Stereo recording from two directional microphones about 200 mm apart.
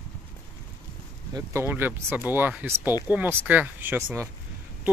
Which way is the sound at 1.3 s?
15° right (ahead or behind).